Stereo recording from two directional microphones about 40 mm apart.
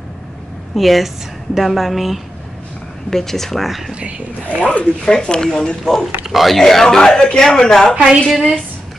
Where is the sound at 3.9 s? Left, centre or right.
Right.